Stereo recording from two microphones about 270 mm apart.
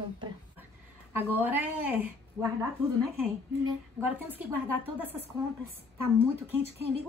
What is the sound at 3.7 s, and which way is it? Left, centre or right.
A woman's voice, centre.